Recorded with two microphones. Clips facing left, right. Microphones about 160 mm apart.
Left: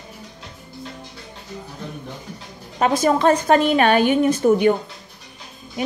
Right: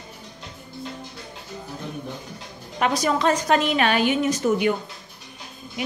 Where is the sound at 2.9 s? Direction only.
50° left (ahead or behind).